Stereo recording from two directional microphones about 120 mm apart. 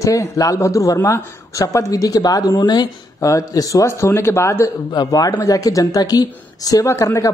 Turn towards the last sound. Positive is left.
turn(degrees=25)  # may be behind; listen again after turning